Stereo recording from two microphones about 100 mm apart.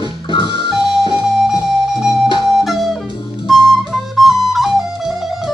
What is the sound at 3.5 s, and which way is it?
Flute, centre (ahead or behind).